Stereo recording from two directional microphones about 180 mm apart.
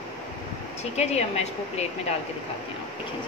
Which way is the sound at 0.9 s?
35° left (ahead or behind).